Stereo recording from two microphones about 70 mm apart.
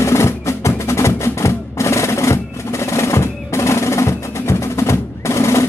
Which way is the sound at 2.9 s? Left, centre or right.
Left.